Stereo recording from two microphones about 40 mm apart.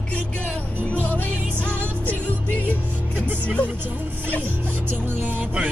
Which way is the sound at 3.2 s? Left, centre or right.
Right.